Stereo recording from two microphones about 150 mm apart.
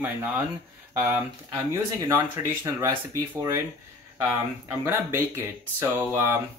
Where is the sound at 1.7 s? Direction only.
20° right (ahead or behind).